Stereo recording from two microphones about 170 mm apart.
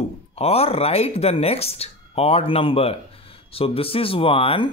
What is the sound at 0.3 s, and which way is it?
Speech, 35° left (ahead or behind).